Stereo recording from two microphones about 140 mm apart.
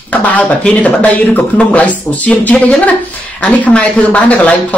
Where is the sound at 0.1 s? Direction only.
10° left (ahead or behind).